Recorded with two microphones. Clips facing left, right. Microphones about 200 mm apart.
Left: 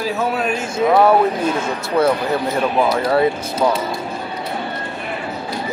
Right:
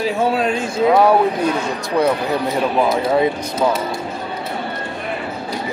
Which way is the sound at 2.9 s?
20° right (ahead or behind).